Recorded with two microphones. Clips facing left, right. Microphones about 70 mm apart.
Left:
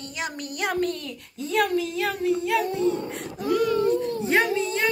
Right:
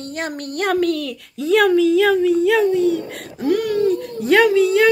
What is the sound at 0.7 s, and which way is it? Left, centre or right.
Speech, right.